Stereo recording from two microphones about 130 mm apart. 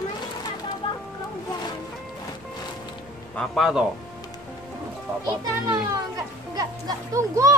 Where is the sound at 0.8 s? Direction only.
40° left (ahead or behind).